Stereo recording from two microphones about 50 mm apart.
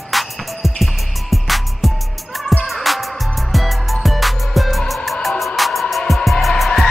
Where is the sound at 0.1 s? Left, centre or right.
Centre.